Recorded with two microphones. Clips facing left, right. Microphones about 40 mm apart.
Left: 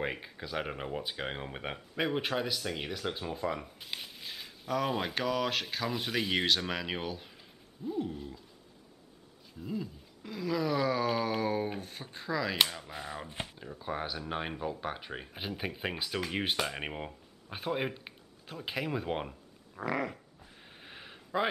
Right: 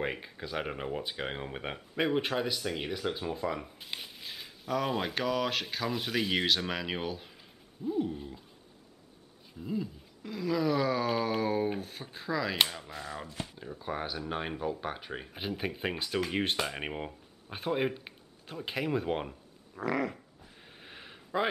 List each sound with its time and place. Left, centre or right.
0.0 s speech: centre
9.6 s speech: centre
12.9 s speech: centre
13.6 s speech: centre